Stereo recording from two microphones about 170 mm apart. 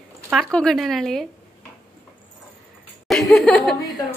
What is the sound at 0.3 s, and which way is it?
Speech, centre (ahead or behind).